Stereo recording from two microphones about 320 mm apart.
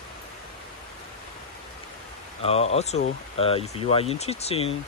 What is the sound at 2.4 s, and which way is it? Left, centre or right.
Speech, centre.